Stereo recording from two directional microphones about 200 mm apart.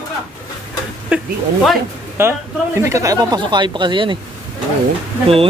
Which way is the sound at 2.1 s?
15° right (ahead or behind).